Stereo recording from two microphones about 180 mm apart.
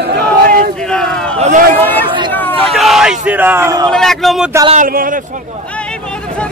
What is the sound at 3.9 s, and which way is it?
Speech, centre (ahead or behind).